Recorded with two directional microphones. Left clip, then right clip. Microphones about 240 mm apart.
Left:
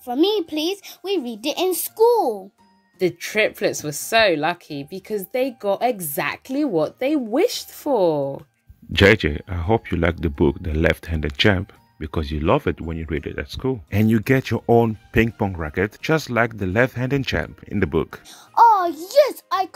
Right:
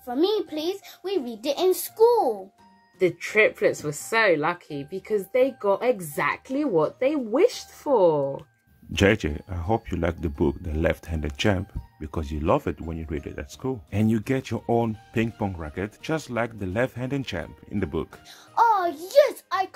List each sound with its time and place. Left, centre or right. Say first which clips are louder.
0.0 s speech: left 4 dB; left
3.3 s speech: right 1 dB; left
8.9 s speech: left 7 dB; centre